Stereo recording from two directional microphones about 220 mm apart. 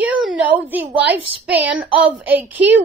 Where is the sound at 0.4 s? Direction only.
10° right (ahead or behind).